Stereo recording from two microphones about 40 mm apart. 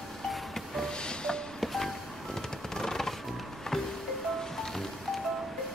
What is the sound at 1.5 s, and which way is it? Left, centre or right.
Music, centre.